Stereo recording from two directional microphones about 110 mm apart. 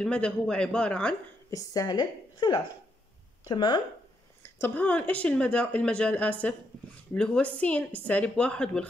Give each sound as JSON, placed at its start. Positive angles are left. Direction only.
{"t": 0.0, "sound": "speech", "side_deg": 10}
{"t": 1.5, "sound": "a woman's voice", "side_deg": 30}
{"t": 4.4, "sound": "speech", "side_deg": 20}